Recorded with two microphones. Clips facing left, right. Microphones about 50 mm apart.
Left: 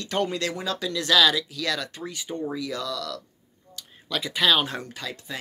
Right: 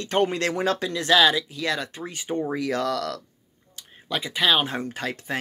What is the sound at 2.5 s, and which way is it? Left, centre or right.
Speech, right.